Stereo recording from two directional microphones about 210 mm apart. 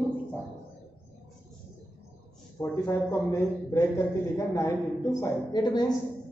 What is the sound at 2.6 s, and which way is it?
A woman's voice, 10° left (ahead or behind).